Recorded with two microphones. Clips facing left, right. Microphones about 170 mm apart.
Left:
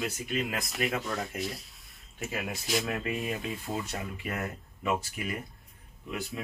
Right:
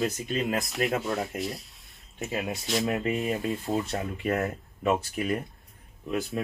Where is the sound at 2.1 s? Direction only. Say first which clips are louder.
Right 4 dB; 20° right (ahead or behind).